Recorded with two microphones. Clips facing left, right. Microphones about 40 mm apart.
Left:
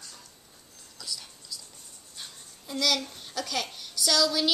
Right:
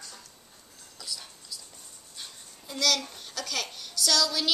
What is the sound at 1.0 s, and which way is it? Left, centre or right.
Whispering, centre.